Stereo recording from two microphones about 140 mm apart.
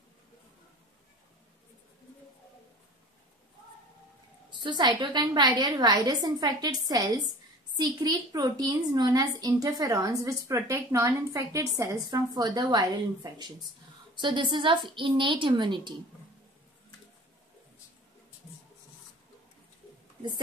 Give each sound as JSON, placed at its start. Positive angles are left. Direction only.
{"t": 4.5, "sound": "a woman's voice", "side_deg": -30}